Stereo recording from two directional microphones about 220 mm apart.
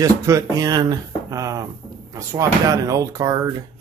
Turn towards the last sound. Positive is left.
turn(degrees=-15)  # may be behind; listen again after turning